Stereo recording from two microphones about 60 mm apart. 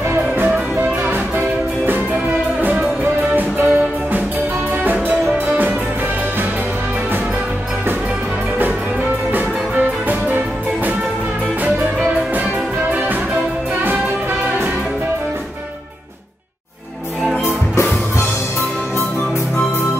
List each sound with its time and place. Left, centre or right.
0.4 s music: right
3.0 s music: right
10.0 s music: right